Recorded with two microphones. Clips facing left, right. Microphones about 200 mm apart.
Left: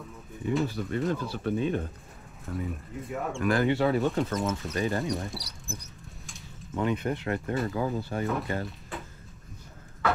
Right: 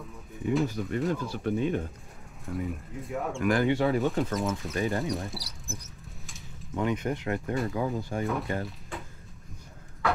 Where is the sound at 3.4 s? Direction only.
15° right (ahead or behind).